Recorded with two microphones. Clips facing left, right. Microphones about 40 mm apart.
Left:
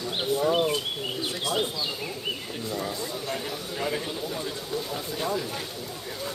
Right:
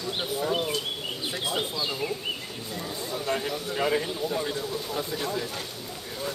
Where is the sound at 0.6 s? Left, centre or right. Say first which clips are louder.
Left 3 dB; centre.